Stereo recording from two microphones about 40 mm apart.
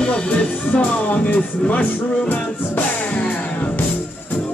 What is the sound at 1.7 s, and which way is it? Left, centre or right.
Speech, left.